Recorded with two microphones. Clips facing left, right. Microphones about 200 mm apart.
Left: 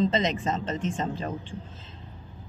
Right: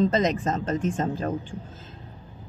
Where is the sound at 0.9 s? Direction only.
50° right (ahead or behind).